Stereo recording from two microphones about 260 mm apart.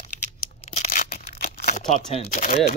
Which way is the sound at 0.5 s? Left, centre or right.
Left.